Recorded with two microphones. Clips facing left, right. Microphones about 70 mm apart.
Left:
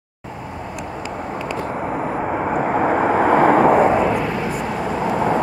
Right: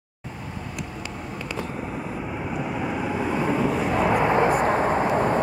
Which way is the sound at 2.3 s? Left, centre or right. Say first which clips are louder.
Left 10 dB; left.